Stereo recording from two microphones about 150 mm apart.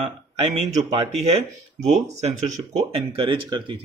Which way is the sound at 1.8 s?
45° right (ahead or behind).